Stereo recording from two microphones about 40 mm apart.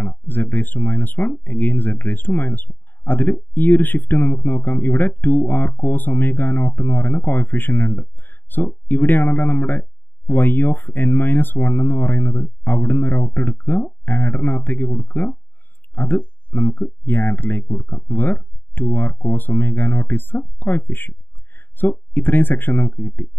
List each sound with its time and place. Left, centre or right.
0.0 s speech: left